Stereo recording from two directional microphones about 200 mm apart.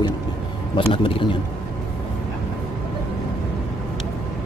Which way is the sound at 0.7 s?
25° left (ahead or behind).